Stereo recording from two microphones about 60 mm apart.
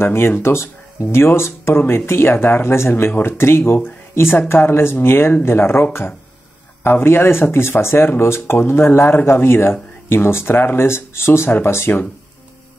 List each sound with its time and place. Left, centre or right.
0.0 s speech: left